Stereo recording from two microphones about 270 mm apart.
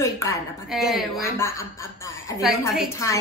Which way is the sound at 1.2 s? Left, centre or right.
Centre.